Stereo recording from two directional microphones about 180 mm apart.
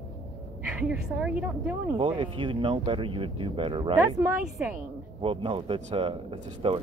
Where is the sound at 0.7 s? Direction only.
5° right (ahead or behind).